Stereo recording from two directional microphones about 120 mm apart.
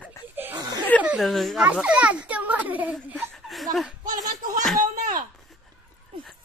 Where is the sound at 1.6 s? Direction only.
10° right (ahead or behind).